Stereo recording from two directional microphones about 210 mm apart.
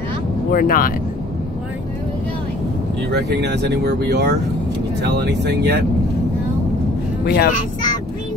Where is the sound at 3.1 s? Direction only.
55° right (ahead or behind).